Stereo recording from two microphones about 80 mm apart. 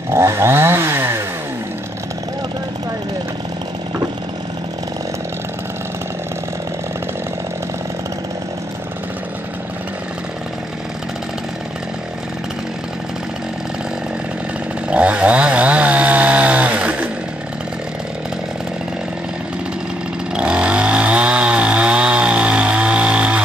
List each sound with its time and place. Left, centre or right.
0.1 s chainsaw: right
14.9 s chainsaw: centre
20.3 s chainsaw: centre